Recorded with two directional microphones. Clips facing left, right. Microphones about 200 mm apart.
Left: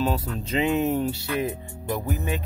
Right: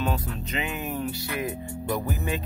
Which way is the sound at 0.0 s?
30° left (ahead or behind).